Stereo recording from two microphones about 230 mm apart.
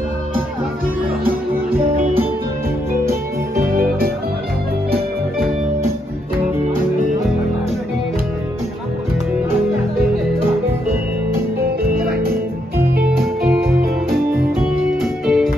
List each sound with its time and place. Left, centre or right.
3.5 s music: right
11.6 s music: right
13.4 s music: centre
15.0 s music: centre